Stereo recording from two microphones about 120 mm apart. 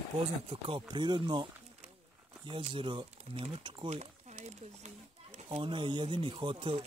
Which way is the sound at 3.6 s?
45° right (ahead or behind).